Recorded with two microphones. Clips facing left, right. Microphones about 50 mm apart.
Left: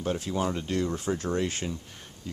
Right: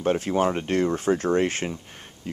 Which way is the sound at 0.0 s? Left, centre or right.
Right.